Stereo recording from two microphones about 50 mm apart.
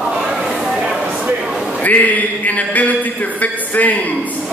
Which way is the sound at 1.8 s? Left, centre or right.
Left.